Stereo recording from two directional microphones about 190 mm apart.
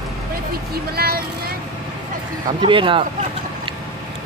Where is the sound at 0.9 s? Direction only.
55° right (ahead or behind).